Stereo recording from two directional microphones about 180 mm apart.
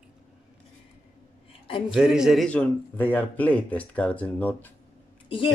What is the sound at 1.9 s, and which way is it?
A man's voice, 5° right (ahead or behind).